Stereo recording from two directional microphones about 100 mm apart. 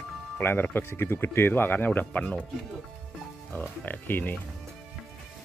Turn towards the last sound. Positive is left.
turn(degrees=20)  # may be behind; listen again after turning